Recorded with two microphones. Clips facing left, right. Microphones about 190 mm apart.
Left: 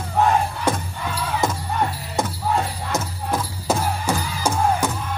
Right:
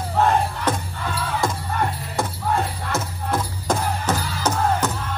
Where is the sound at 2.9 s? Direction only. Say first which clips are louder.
Even; 15° left (ahead or behind).